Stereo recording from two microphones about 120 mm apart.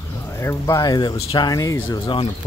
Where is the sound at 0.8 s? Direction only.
35° left (ahead or behind).